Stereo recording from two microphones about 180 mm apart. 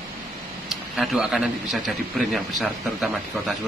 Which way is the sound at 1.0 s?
Centre (ahead or behind).